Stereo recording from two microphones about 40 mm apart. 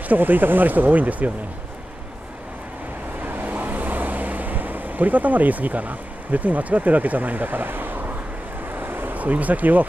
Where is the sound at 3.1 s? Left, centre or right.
Right.